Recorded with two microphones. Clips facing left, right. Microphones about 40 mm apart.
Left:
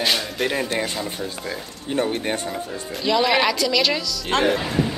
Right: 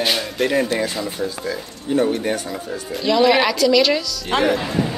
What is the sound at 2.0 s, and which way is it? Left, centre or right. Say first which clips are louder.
Speech: right 3 dB; centre.